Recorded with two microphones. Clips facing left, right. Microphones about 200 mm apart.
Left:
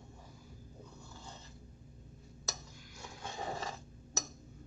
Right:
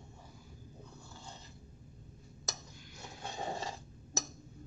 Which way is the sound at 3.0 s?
25° right (ahead or behind).